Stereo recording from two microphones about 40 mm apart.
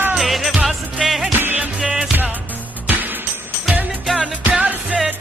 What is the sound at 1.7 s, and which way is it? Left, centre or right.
Music, centre.